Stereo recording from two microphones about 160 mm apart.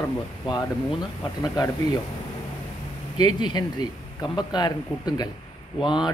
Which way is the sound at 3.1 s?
25° left (ahead or behind).